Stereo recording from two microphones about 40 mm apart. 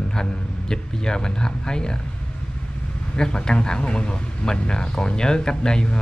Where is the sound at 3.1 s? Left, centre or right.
Centre.